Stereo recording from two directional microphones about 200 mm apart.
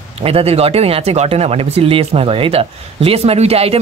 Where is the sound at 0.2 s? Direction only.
30° right (ahead or behind).